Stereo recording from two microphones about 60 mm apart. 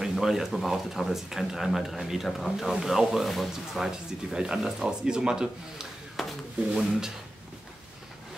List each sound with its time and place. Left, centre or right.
0.0 s speech: centre
6.1 s speech: centre